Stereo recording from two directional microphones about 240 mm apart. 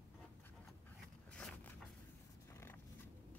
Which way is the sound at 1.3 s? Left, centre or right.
Centre.